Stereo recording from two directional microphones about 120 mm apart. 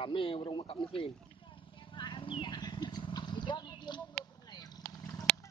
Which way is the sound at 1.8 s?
45° left (ahead or behind).